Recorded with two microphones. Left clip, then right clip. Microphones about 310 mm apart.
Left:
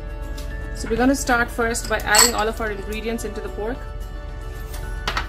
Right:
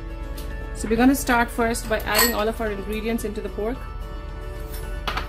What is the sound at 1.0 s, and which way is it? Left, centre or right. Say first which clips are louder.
Speech: left 1 dB; right.